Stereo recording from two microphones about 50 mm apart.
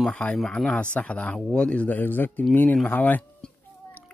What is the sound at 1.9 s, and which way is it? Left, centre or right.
Speech, left.